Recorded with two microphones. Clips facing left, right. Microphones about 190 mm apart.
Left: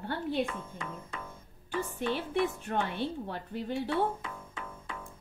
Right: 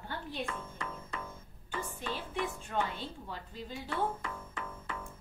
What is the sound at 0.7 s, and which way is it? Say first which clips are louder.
Music: left 1 dB; 15° left (ahead or behind).